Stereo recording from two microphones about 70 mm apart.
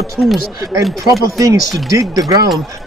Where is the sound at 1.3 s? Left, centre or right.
Right.